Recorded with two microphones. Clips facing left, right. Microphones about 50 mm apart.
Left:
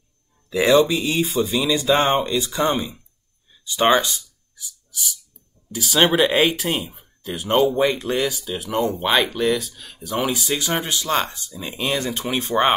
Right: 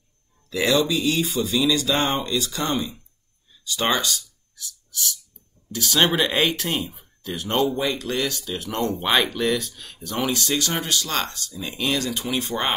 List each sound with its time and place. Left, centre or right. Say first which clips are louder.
0.5 s speech: left 5 dB; centre
3.6 s a sound: left 6 dB; left
5.7 s speech: left 3 dB; centre
7.7 s speech: left 5 dB; left
8.1 s speech: left 3 dB; centre